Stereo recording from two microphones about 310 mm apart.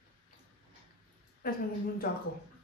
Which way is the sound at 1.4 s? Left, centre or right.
Left.